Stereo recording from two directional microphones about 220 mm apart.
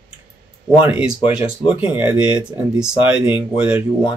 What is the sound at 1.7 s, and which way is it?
Speech, 5° right (ahead or behind).